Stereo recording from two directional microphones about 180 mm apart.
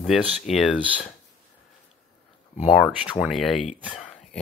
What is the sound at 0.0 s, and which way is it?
Speech, centre (ahead or behind).